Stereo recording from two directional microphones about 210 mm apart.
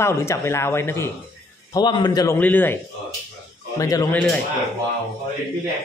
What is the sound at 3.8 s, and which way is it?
Speech, 15° left (ahead or behind).